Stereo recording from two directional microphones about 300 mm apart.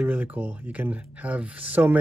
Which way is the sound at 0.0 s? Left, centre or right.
Centre.